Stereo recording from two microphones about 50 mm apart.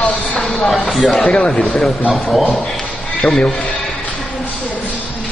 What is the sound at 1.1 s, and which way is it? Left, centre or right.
Speech, centre.